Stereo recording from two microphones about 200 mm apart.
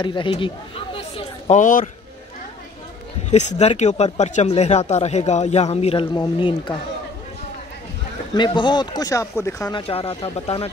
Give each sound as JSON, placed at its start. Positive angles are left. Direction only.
{"t": 0.0, "sound": "speech", "side_deg": 25}
{"t": 1.6, "sound": "speech", "side_deg": 40}
{"t": 3.3, "sound": "speech", "side_deg": 35}
{"t": 8.4, "sound": "speech", "side_deg": 25}